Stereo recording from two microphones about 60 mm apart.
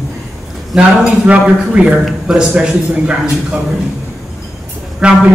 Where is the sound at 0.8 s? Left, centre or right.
Right.